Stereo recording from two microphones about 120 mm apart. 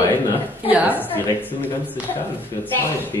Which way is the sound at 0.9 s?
15° left (ahead or behind).